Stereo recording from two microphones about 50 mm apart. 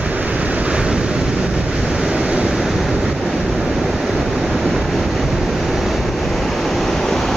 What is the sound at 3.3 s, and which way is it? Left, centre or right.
Vehicle, centre.